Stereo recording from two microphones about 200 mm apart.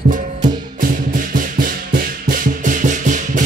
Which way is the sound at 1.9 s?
45° right (ahead or behind).